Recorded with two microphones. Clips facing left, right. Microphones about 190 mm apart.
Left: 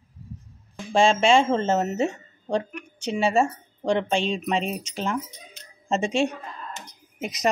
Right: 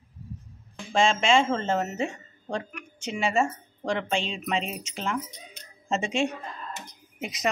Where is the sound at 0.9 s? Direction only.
35° left (ahead or behind).